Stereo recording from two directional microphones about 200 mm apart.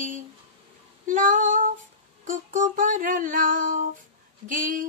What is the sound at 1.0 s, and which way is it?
Female singing, 40° right (ahead or behind).